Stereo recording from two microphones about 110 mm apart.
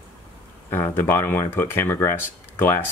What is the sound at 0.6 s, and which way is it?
Speech, 20° left (ahead or behind).